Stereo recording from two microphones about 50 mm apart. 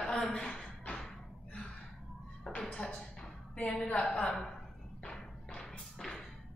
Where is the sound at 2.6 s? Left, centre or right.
Centre.